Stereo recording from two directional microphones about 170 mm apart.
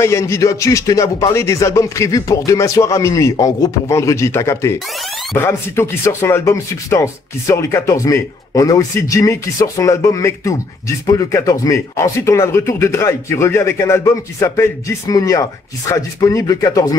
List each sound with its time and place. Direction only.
0.0 s speech: 15° left (ahead or behind)